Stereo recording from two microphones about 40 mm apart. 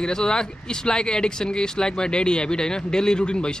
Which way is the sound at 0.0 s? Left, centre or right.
Centre.